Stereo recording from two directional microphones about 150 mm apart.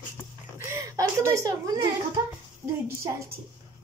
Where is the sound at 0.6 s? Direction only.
20° right (ahead or behind).